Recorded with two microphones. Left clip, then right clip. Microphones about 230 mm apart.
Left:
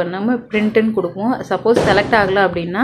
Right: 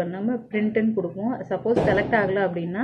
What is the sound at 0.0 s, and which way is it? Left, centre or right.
A woman's voice, left.